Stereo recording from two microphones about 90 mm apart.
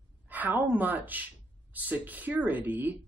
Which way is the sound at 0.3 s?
20° right (ahead or behind).